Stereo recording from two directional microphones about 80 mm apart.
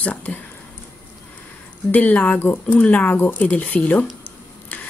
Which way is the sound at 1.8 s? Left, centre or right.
Left.